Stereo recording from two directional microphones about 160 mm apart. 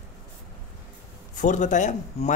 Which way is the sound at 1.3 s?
50° left (ahead or behind).